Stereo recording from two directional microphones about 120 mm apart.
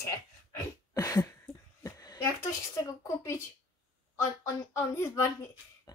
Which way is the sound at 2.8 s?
25° left (ahead or behind).